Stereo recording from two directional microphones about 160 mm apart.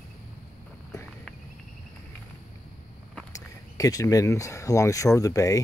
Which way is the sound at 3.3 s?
20° left (ahead or behind).